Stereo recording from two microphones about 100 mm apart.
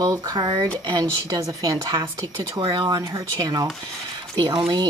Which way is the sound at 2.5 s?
50° right (ahead or behind).